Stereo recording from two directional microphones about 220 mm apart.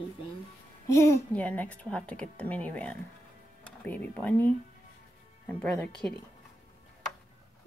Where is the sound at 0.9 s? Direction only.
15° left (ahead or behind).